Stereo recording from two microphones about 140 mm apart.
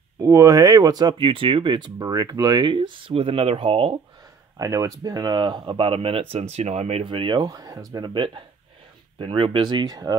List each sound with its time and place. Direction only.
0.2 s speech: 25° right (ahead or behind); by 3.9 s 40° right (ahead or behind)
4.6 s speech: 25° right (ahead or behind)